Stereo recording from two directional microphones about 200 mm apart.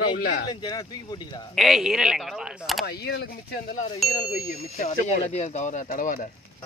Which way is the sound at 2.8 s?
55° left (ahead or behind).